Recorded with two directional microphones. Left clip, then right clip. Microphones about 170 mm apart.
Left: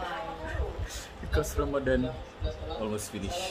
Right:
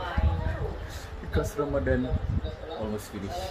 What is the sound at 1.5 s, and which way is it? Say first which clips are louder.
Speech: right 1 dB; 5° right (ahead or behind).